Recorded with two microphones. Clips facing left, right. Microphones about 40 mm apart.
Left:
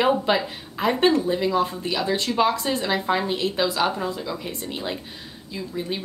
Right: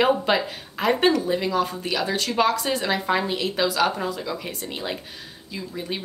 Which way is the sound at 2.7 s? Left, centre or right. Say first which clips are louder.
Even; centre.